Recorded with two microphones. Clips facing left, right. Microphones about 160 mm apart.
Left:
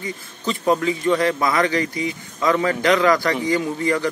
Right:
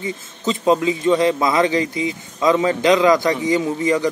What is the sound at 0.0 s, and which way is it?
A man's voice, 20° right (ahead or behind).